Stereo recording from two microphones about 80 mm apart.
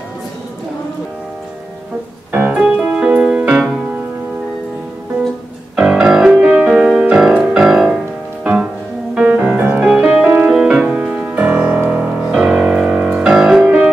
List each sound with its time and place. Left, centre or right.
2.3 s keyboard: centre
5.8 s music: centre
7.6 s music: centre
9.1 s music: centre
9.8 s music: centre